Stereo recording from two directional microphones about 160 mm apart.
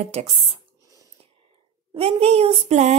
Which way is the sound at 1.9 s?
40° right (ahead or behind).